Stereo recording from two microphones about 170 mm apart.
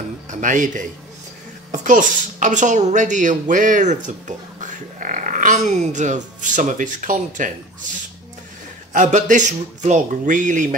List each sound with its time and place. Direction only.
0.3 s a woman's voice: 50° right (ahead or behind)
8.9 s a woman's voice: 45° right (ahead or behind)